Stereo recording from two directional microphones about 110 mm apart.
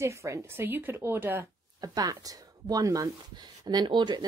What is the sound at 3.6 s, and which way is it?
Speech, 40° right (ahead or behind).